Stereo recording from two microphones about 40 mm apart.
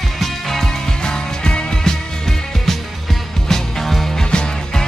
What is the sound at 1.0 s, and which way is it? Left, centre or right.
Music, left.